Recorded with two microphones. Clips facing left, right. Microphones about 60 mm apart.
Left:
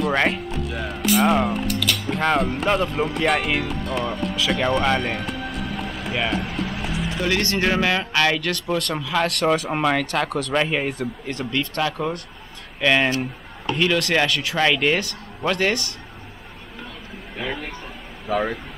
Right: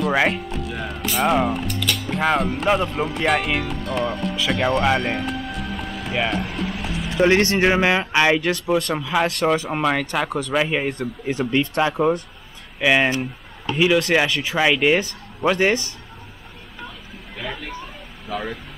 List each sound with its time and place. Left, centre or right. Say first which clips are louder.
0.0 s speech: right 1 dB; centre
4.5 s music: right 1 dB; centre
7.2 s speech: right 7 dB; right; by 11.1 s centre
11.2 s speech: right 7 dB; centre
18.3 s speech: left 5 dB; centre